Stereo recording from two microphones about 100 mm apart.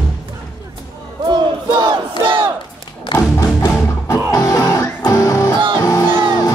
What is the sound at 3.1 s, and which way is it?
Music, 50° left (ahead or behind).